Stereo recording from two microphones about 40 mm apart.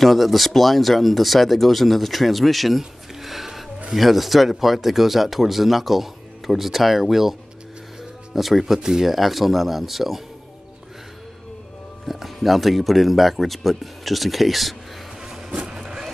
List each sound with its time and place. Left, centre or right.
0.0 s speech: centre
2.8 s a sound: centre
3.9 s speech: centre
12.4 s speech: centre
15.6 s vehicle: centre